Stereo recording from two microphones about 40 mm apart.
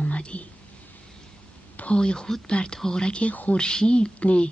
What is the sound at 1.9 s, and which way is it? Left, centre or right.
Speech, left.